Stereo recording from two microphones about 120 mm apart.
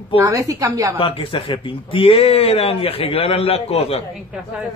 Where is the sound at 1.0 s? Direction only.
50° left (ahead or behind).